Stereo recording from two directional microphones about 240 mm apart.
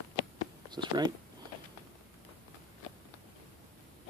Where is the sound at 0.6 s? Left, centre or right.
Centre.